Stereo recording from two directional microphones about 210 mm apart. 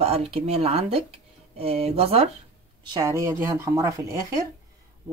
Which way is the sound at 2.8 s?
15° right (ahead or behind).